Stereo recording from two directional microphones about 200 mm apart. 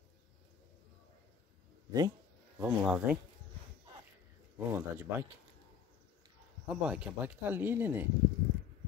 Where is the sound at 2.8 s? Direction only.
5° right (ahead or behind).